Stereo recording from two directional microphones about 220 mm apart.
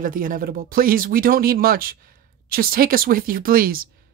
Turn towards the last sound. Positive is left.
turn(degrees=-40)  # may be behind; listen again after turning